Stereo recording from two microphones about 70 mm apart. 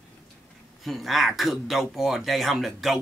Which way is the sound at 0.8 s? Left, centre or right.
Centre.